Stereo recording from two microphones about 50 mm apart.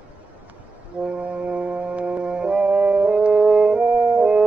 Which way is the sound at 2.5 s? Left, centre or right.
Right.